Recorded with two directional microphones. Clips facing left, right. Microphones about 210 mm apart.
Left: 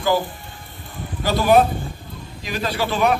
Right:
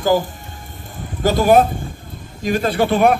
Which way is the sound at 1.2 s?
45° right (ahead or behind).